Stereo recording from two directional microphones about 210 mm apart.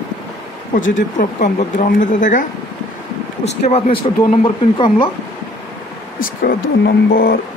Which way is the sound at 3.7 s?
30° left (ahead or behind).